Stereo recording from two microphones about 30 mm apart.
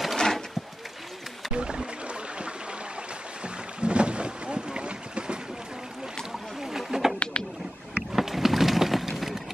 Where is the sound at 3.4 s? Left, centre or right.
Right.